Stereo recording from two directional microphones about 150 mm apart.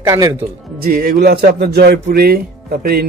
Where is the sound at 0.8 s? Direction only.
80° right.